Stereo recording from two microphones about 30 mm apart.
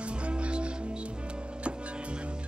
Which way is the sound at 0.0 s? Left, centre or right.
Right.